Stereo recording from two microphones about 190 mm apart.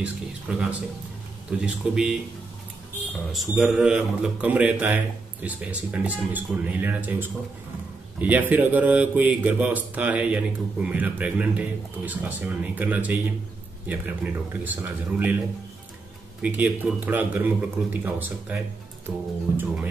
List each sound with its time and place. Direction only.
0.0 s a man's voice: 5° right (ahead or behind)
3.3 s a man's voice: centre (ahead or behind)
16.4 s a man's voice: 5° right (ahead or behind)